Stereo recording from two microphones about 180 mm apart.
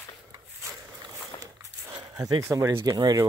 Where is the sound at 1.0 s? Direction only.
20° right (ahead or behind).